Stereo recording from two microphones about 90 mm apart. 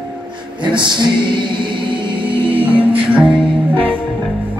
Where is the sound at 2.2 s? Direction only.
80° right.